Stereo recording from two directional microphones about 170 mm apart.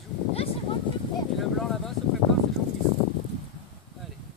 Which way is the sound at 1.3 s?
Centre (ahead or behind).